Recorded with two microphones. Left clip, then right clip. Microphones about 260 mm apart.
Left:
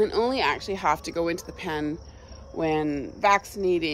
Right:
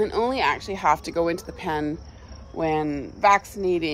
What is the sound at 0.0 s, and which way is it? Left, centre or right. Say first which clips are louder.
Speech: right 1 dB; centre.